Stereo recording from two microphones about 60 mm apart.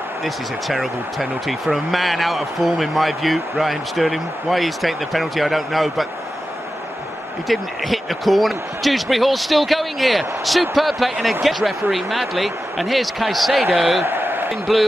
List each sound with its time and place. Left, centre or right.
0.2 s a man's voice: centre
7.4 s a man's voice: centre
14.0 s a sound: right